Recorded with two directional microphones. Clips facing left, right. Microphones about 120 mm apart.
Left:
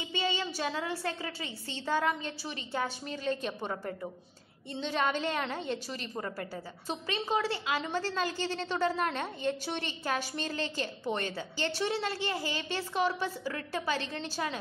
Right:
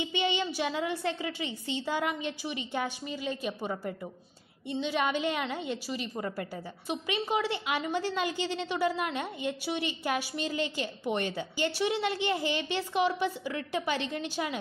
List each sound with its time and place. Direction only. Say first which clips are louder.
0.2 s a woman's voice: right 2 dB; 20° right (ahead or behind)